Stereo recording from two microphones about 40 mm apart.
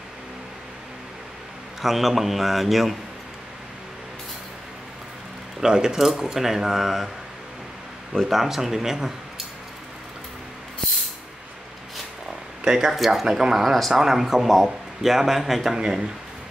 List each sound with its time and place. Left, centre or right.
1.8 s a man's voice: centre
5.6 s speech: centre
8.2 s speech: centre
12.6 s speech: centre
12.9 s a man's voice: centre
15.7 s speech: centre